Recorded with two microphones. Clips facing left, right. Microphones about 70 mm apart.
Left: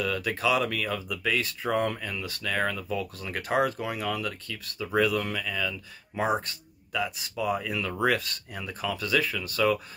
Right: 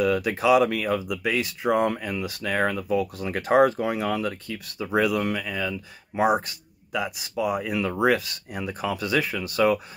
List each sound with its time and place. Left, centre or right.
0.0 s speech: centre
8.1 s speech: centre
8.5 s speech: centre